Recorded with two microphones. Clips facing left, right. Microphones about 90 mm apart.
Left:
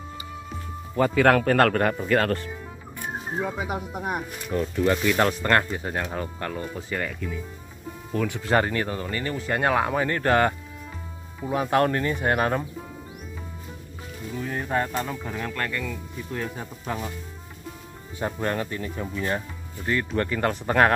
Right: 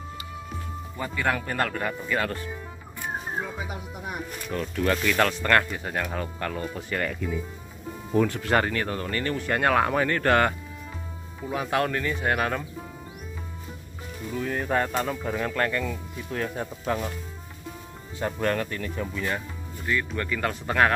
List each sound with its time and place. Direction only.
0.9 s speech: 70° left (ahead or behind); by 2.4 s 50° left (ahead or behind)
3.5 s speech: 55° left (ahead or behind)
4.7 s speech: 15° left (ahead or behind)
8.1 s speech: 15° right (ahead or behind)
8.5 s speech: 25° left (ahead or behind)
11.5 s speech: 35° left (ahead or behind)
14.3 s speech: 5° left (ahead or behind); by 16.0 s 15° right (ahead or behind)
16.3 s speech: centre (ahead or behind)
18.2 s speech: 20° left (ahead or behind)
19.9 s speech: 40° left (ahead or behind)